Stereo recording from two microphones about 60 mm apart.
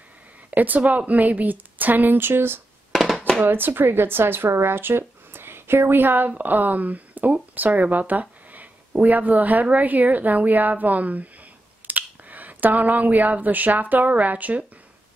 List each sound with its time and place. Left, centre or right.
0.5 s speech: right
2.9 s a sound: centre
3.4 s speech: right